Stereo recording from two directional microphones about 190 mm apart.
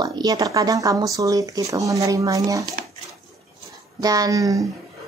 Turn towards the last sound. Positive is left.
turn(degrees=-20)  # may be behind; listen again after turning